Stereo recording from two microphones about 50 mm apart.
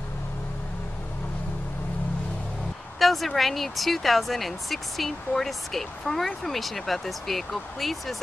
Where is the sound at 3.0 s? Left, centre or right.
Centre.